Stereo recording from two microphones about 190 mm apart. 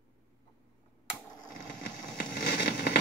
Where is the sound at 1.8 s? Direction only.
55° left (ahead or behind).